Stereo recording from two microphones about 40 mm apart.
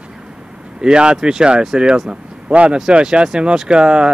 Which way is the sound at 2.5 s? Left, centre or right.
Right.